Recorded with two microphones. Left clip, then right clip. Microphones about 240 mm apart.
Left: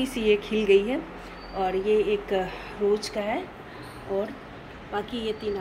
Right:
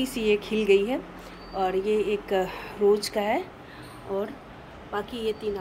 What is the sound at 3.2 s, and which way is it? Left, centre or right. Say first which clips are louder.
Speech: right 3 dB; right.